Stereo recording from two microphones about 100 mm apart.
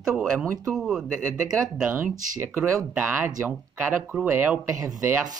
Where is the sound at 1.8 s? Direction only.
25° right (ahead or behind).